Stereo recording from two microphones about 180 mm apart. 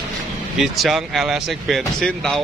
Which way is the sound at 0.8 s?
Centre (ahead or behind).